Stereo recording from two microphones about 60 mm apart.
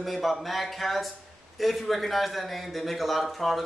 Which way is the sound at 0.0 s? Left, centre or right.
Centre.